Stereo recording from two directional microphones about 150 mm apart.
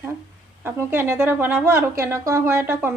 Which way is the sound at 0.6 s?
15° right (ahead or behind).